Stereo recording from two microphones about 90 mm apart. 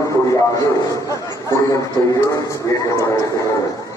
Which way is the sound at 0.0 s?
35° left (ahead or behind).